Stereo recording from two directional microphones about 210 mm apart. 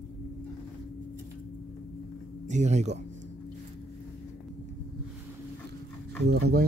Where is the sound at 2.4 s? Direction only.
35° right (ahead or behind).